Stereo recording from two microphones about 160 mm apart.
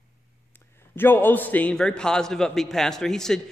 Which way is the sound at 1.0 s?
15° left (ahead or behind).